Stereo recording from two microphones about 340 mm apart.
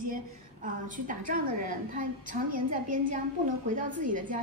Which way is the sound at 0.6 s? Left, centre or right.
Right.